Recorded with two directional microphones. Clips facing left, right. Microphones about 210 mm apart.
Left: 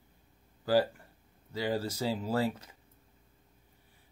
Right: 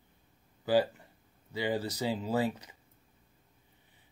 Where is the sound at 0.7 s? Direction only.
15° right (ahead or behind).